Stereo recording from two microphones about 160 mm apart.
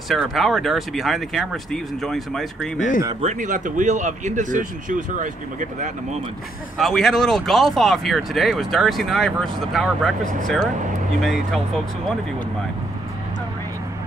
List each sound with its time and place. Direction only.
0.1 s speech: centre (ahead or behind)
3.2 s speech: 50° right (ahead or behind)
6.8 s speech: centre (ahead or behind)